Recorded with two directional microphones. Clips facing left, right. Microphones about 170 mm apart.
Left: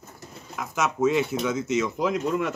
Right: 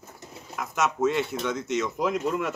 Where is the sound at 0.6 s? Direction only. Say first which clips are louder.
Left 1 dB; centre (ahead or behind).